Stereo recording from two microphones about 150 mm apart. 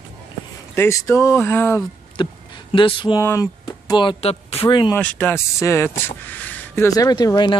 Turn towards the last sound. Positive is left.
turn(degrees=30)  # may be behind; listen again after turning